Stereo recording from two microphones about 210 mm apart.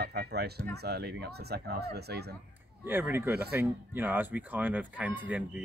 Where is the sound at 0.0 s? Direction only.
50° right (ahead or behind).